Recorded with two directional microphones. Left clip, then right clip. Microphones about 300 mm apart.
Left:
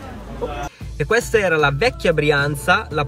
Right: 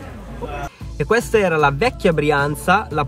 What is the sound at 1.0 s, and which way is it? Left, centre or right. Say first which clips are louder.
Speech: right 1 dB; centre.